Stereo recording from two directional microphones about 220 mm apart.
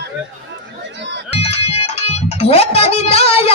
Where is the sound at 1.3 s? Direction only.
30° left (ahead or behind).